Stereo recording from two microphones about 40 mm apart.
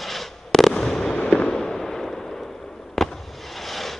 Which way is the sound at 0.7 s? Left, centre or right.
Centre.